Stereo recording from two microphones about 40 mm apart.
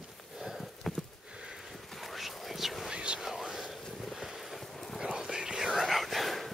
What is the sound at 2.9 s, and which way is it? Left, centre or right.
Whispering, right.